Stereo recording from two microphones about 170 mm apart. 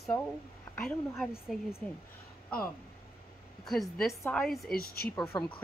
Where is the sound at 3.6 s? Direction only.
Centre (ahead or behind).